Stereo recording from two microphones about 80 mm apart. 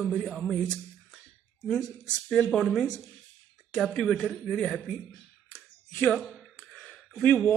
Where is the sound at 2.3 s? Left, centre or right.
Centre.